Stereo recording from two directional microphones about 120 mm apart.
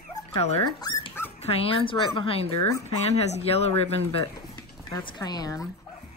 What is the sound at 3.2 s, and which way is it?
Speech, 65° left (ahead or behind).